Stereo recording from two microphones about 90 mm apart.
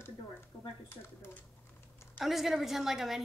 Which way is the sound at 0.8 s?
25° left (ahead or behind).